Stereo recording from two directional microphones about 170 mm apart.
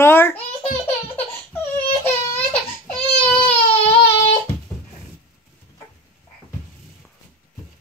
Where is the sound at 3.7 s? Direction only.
35° left (ahead or behind).